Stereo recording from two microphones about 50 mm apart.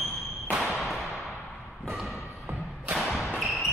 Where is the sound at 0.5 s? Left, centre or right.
Centre.